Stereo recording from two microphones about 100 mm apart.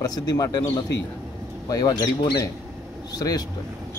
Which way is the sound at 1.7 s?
40° left (ahead or behind).